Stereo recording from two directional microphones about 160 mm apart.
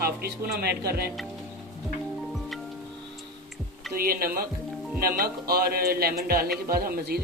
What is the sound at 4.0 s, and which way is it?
Speech, 65° right (ahead or behind).